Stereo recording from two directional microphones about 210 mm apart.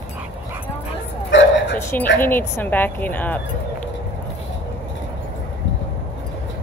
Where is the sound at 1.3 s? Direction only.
60° left (ahead or behind).